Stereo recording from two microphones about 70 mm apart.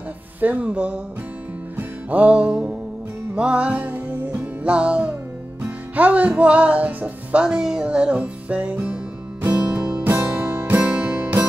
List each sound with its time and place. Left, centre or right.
0.4 s speech: centre
1.8 s music: right
7.4 s speech: centre
9.5 s music: centre
10.3 s music: right